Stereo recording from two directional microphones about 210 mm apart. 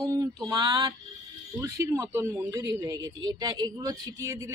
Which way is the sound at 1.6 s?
15° right (ahead or behind).